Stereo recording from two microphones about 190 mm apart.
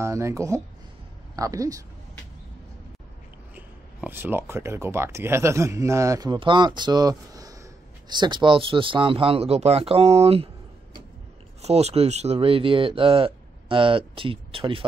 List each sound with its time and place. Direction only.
0.0 s speech: 15° right (ahead or behind)
3.5 s speech: 10° right (ahead or behind); by 14.9 s 25° right (ahead or behind)